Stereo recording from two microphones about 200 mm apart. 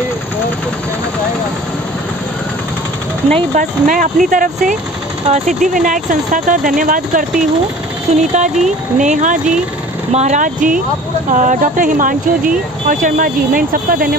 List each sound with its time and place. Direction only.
3.3 s speech: 35° right (ahead or behind)